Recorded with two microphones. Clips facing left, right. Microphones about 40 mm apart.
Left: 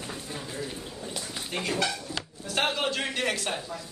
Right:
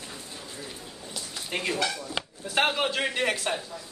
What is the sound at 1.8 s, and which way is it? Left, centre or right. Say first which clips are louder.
Speech: right 1 dB; right.